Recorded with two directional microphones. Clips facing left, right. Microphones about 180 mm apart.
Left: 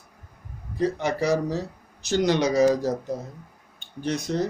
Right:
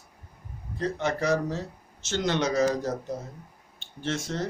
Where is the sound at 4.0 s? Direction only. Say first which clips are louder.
Left 5 dB; 15° left (ahead or behind).